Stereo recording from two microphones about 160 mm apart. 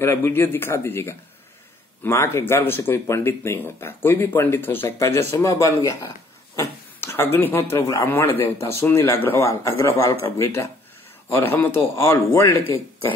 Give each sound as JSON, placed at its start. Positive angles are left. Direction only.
{"t": 0.0, "sound": "a man's voice", "side_deg": 15}